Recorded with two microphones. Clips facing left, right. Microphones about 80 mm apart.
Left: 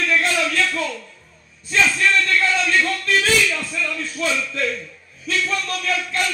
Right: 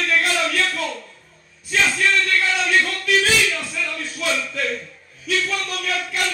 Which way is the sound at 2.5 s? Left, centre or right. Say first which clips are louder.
Even; centre.